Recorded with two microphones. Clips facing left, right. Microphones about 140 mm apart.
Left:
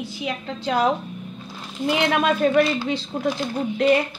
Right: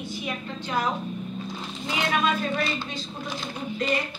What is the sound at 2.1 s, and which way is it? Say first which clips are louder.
Speech: left 7 dB; 70° left (ahead or behind).